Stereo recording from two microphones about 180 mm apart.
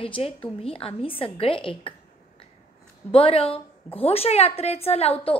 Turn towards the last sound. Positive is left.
turn(degrees=35)  # may be behind; listen again after turning